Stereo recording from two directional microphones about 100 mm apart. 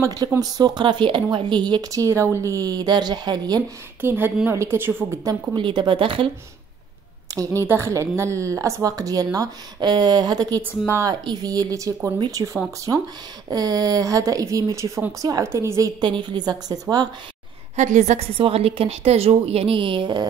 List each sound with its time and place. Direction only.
0.0 s a woman's voice: 40° right (ahead or behind)
4.0 s a woman's voice: 20° right (ahead or behind)
5.2 s a woman's voice: 35° right (ahead or behind)
5.6 s speech: 55° right (ahead or behind)
7.3 s a woman's voice: 30° right (ahead or behind)
10.6 s a woman's voice: 25° right (ahead or behind)
11.1 s a woman's voice: 40° right (ahead or behind)
13.5 s a woman's voice: 40° right (ahead or behind)
16.0 s speech: 50° right (ahead or behind)
18.4 s a woman's voice: 75° right (ahead or behind); by 20.2 s 50° right (ahead or behind)